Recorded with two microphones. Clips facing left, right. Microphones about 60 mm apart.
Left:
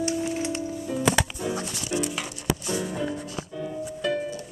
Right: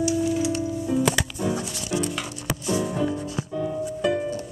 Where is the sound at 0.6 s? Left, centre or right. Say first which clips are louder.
Right 5 dB; centre.